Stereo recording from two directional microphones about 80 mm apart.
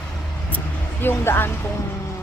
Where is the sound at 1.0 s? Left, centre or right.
Left.